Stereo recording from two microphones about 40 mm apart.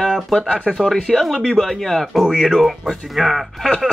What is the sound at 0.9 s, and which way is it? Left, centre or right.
Speech, centre.